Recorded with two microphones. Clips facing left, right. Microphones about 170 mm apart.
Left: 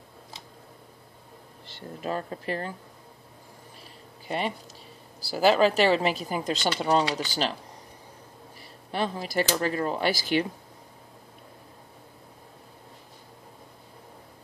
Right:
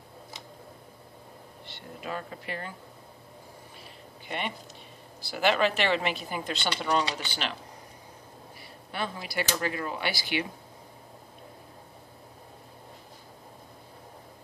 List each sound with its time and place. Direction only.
1.8 s speech: 40° left (ahead or behind)
4.3 s speech: 35° left (ahead or behind)
8.9 s speech: 35° left (ahead or behind)